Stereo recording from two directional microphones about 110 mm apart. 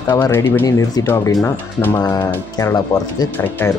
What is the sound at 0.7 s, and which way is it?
Speech, 35° left (ahead or behind).